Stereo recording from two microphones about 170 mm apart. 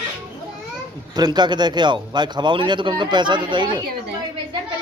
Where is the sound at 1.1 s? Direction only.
25° right (ahead or behind).